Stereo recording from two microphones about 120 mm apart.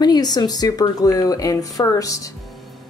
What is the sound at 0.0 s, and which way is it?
Speech, 35° left (ahead or behind).